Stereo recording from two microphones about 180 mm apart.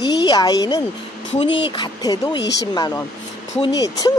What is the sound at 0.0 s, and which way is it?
A woman's voice, 20° left (ahead or behind).